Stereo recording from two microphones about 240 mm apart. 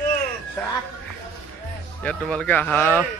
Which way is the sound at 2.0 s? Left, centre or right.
Centre.